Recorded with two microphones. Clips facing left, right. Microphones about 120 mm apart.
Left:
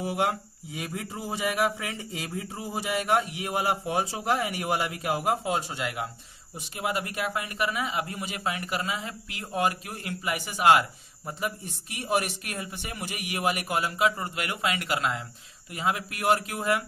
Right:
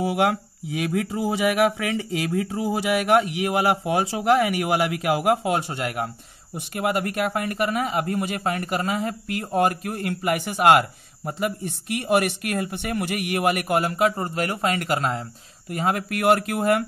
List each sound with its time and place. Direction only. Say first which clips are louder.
0.0 s a man's voice: right 6 dB; 85° right; by 14.1 s 50° right (ahead or behind)
14.1 s a man's voice: right 7 dB; 40° right (ahead or behind); by 16.8 s 55° right (ahead or behind)